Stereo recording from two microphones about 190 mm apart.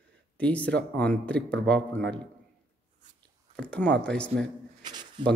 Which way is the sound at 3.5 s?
5° left (ahead or behind).